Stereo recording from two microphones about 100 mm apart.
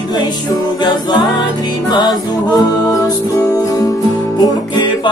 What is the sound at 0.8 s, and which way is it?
Music, 45° left (ahead or behind).